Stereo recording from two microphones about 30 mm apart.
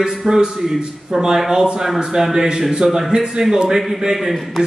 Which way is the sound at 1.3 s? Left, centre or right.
Centre.